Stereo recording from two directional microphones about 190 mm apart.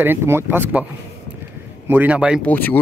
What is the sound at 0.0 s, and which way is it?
Speech, 10° right (ahead or behind).